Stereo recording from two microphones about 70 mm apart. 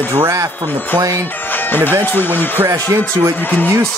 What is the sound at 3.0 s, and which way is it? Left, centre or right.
Speech, left.